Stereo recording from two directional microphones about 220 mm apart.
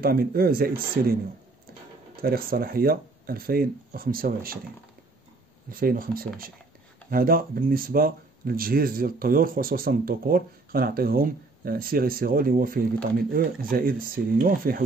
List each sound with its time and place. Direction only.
0.0 s speech: 40° right (ahead or behind)
2.2 s speech: 40° right (ahead or behind)
5.7 s speech: 40° right (ahead or behind)